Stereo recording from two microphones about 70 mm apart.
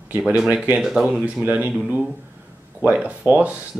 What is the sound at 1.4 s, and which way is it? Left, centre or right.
Speech, centre.